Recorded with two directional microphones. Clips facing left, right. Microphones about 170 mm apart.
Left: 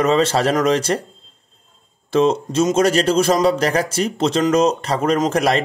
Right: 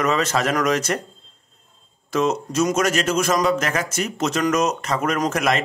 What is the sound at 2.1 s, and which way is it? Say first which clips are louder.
Speech: left 5 dB; 30° left (ahead or behind).